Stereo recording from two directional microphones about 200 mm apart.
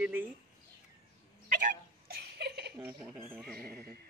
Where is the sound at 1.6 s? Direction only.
50° right (ahead or behind).